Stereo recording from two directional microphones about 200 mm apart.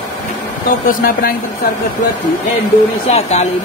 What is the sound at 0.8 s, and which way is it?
Speech, 45° left (ahead or behind).